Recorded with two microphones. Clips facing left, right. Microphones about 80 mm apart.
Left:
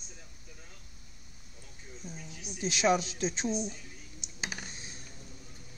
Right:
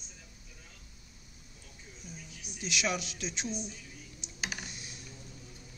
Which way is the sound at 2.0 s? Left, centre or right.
Left.